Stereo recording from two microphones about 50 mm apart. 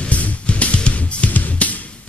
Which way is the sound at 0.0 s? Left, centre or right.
Left.